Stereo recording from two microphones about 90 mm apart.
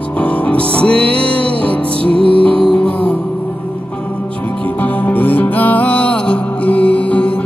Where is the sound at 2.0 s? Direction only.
90° right.